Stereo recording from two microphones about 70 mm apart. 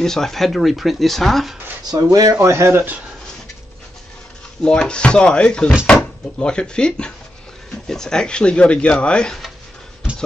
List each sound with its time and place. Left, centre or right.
0.0 s speech: centre
1.9 s speech: right
2.4 s speech: right
4.6 s speech: centre